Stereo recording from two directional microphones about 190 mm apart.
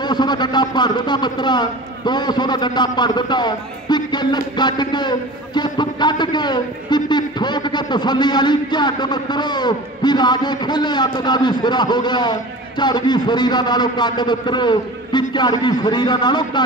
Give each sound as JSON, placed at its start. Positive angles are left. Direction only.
{"t": 0.0, "sound": "a man's voice", "side_deg": 20}